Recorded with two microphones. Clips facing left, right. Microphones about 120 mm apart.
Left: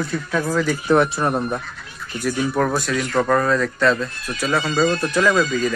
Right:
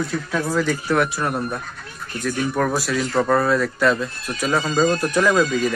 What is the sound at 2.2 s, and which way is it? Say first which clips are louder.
A man's voice: left 1 dB; 10° left (ahead or behind).